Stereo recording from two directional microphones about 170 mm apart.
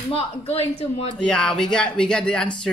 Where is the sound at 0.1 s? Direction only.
35° left (ahead or behind).